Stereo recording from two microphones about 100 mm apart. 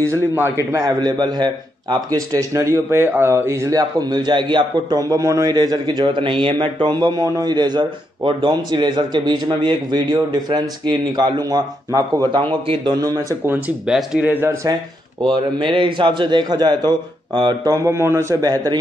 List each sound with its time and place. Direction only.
0.1 s a man's voice: 25° right (ahead or behind); by 12.4 s 45° right (ahead or behind)
12.4 s a man's voice: 60° right (ahead or behind)
12.9 s a man's voice: 40° right (ahead or behind)
13.8 s speech: 5° right (ahead or behind)
14.2 s speech: 20° right (ahead or behind)
15.3 s a man's voice: 55° right (ahead or behind)
17.7 s a man's voice: 30° right (ahead or behind)